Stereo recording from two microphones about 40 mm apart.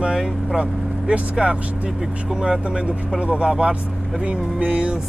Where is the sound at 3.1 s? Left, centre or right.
Right.